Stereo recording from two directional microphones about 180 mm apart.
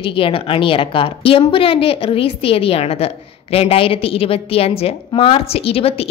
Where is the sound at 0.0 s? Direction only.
30° left (ahead or behind).